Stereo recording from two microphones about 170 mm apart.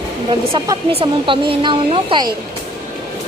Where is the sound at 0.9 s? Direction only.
35° right (ahead or behind).